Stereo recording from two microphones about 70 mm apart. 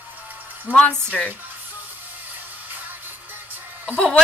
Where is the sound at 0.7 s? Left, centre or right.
Centre.